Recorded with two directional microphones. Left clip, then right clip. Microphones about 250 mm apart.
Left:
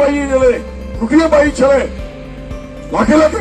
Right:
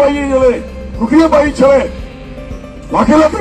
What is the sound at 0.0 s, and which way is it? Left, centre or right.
A man's voice, left.